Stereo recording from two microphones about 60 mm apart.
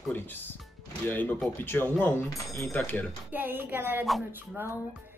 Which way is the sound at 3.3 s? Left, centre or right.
Right.